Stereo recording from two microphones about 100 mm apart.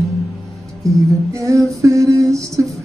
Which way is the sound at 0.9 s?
35° right (ahead or behind).